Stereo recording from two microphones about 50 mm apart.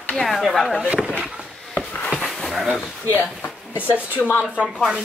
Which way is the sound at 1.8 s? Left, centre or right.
Centre.